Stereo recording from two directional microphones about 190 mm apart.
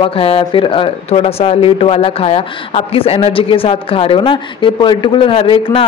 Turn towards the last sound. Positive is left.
turn(degrees=25)  # may be behind; listen again after turning